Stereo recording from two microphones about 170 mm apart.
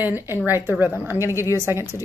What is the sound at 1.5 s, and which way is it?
Speech, 15° right (ahead or behind).